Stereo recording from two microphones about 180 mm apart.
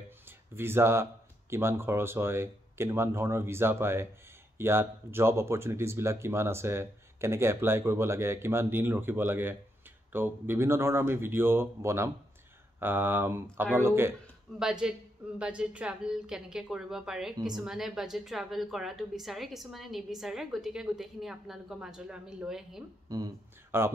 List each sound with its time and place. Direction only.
0.6 s a woman's voice: 15° right (ahead or behind)
23.0 s speech: 20° right (ahead or behind)